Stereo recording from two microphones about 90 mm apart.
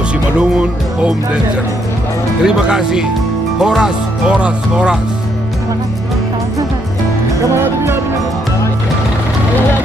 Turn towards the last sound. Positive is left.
turn(degrees=-30)  # may be behind; listen again after turning